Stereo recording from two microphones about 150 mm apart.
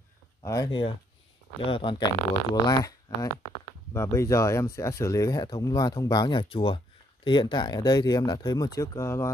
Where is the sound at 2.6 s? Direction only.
25° left (ahead or behind).